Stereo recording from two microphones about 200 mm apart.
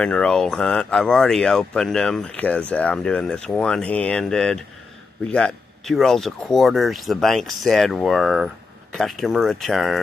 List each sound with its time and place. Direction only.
0.0 s speech: 5° left (ahead or behind)